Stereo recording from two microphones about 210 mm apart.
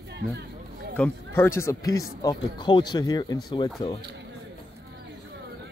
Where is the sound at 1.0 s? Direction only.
10° left (ahead or behind).